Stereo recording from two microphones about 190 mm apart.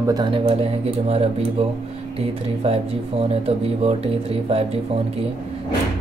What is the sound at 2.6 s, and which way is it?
Speech, 30° right (ahead or behind).